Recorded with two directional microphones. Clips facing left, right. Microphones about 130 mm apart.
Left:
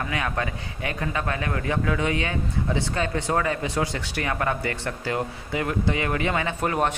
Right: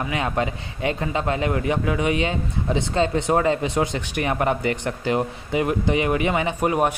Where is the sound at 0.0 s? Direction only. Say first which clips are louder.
Right 4 dB; 20° right (ahead or behind).